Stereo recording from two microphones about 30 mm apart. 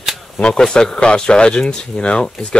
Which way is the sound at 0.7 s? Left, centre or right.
Left.